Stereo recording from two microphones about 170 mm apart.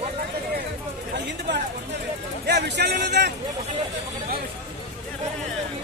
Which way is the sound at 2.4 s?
80° right.